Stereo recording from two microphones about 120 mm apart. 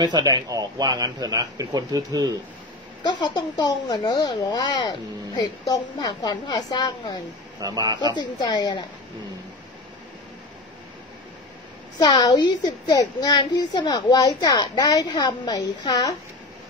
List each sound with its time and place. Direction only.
0.0 s a man's voice: 35° right (ahead or behind)
3.0 s speech: 35° left (ahead or behind)
7.6 s a man's voice: 30° right (ahead or behind)
8.0 s speech: 35° left (ahead or behind)
12.0 s speech: 35° left (ahead or behind)